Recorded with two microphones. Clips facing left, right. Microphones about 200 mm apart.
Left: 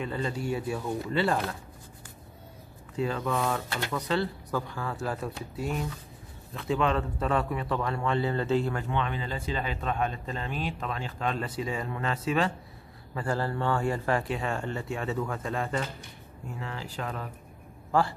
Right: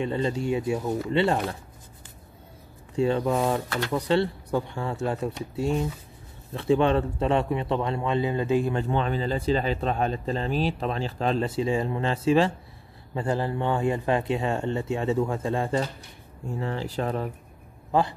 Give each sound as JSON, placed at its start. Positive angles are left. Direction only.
{"t": 0.0, "sound": "a man's voice", "side_deg": -25}
{"t": 3.0, "sound": "a man's voice", "side_deg": -25}
{"t": 8.7, "sound": "a man's voice", "side_deg": -35}
{"t": 17.9, "sound": "a man's voice", "side_deg": -20}